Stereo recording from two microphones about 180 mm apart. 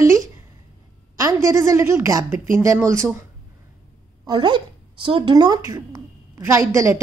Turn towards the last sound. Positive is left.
turn(degrees=-15)  # may be behind; listen again after turning